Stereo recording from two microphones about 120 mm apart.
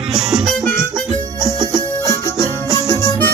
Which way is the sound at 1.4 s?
35° right (ahead or behind).